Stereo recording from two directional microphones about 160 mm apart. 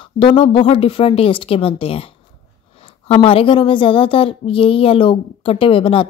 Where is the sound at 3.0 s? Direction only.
35° left (ahead or behind).